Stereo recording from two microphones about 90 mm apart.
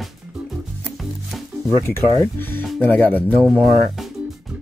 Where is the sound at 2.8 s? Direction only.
20° left (ahead or behind).